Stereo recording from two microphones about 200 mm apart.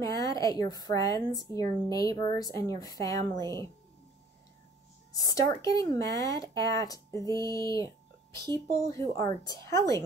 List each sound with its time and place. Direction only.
0.0 s speech: 15° left (ahead or behind)
5.1 s speech: 15° left (ahead or behind)